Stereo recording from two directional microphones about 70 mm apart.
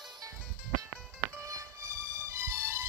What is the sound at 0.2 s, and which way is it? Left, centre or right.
Music, right.